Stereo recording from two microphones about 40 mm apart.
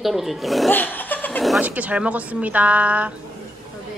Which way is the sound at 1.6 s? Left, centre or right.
Right.